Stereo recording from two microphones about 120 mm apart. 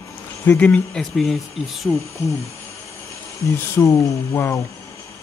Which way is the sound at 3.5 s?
25° left (ahead or behind).